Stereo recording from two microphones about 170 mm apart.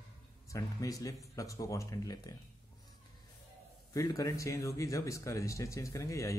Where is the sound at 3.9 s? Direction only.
20° left (ahead or behind).